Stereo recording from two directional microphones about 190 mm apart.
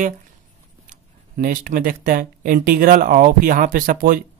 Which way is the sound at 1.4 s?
45° right (ahead or behind).